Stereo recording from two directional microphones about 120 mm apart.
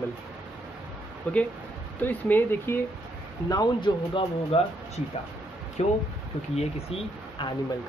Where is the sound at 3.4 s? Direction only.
35° left (ahead or behind).